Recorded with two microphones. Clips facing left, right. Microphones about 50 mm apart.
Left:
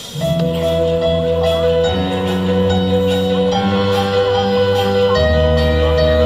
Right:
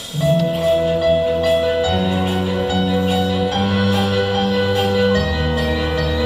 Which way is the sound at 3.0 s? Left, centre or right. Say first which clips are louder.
Left 3 dB; right.